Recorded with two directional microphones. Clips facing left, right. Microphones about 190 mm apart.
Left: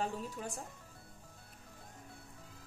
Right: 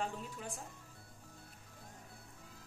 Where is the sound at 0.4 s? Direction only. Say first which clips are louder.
Left 3 dB; 40° left (ahead or behind).